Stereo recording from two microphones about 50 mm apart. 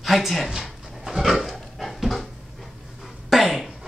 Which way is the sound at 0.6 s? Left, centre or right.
Centre.